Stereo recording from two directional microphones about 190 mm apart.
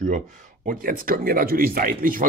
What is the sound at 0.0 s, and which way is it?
Speech, 40° right (ahead or behind).